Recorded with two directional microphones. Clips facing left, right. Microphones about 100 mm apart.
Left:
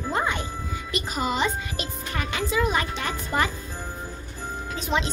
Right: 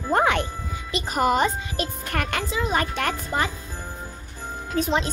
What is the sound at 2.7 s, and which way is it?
Speech, 60° right (ahead or behind).